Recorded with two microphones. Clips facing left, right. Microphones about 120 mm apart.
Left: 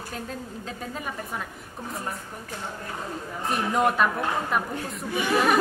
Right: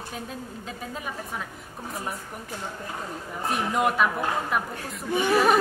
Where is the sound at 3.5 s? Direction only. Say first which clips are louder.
Left 1 dB; centre (ahead or behind).